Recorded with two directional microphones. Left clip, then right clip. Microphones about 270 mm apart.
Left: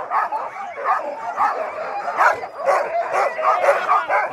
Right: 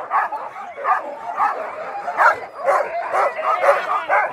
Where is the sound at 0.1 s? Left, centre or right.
Centre.